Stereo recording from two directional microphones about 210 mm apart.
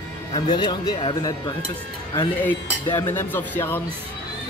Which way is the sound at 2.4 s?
10° left (ahead or behind).